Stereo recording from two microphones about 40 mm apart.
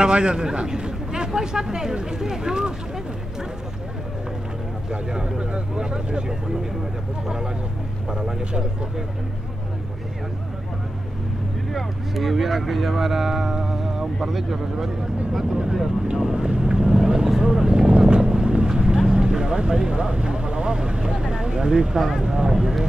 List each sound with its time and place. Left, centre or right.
0.0 s speech: right
5.1 s speech: right
8.1 s speech: centre
11.7 s speech: centre
17.4 s vehicle: centre
22.2 s speech: centre